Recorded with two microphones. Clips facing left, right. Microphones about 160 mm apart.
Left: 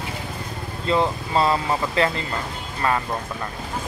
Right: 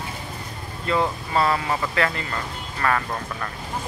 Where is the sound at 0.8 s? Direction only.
25° left (ahead or behind).